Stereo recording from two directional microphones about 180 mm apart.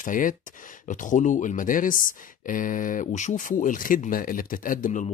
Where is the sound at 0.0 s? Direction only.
50° left (ahead or behind).